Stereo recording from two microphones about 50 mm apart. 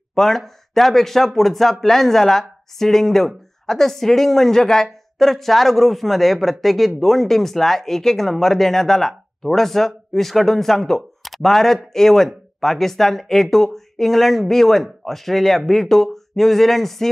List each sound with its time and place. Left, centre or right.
0.1 s speech: centre